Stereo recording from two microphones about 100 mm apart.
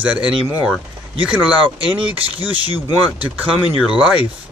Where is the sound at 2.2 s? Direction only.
70° right (ahead or behind).